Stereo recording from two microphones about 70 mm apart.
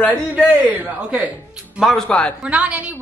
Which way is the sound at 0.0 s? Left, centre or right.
Centre.